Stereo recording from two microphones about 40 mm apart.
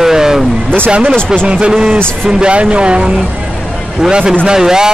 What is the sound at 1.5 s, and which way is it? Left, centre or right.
Speech, right.